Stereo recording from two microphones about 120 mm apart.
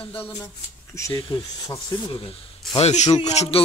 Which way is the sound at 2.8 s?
70° left (ahead or behind).